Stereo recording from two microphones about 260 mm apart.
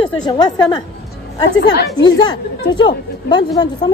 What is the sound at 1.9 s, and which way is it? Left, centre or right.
Speech, centre.